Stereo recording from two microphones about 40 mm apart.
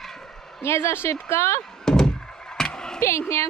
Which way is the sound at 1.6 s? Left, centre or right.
Centre.